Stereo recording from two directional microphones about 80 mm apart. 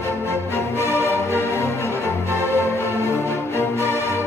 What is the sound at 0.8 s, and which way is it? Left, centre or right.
Music, right.